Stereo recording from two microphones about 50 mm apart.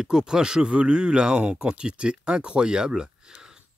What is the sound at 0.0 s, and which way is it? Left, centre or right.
Speech, centre.